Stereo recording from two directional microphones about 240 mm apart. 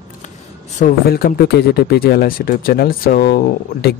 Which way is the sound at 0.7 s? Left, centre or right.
Left.